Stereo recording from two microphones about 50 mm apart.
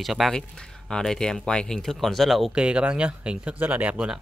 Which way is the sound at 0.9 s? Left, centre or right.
Centre.